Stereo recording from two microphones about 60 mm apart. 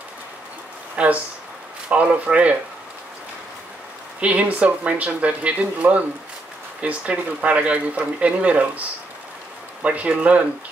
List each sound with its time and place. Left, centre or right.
0.9 s speech: right
4.2 s speech: right
9.8 s speech: right